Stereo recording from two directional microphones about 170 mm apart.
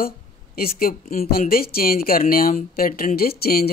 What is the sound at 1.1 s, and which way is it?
Speech, 60° left (ahead or behind).